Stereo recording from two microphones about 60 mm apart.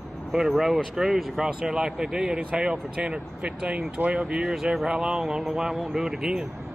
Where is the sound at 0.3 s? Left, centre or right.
Centre.